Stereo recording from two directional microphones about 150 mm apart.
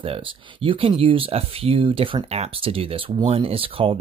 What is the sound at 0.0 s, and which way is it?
Speech, 35° right (ahead or behind).